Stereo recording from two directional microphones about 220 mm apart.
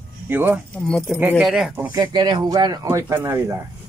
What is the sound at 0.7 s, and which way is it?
Speech, 5° left (ahead or behind).